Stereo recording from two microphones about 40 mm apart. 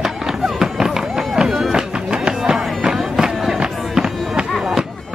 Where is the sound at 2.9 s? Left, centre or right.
Centre.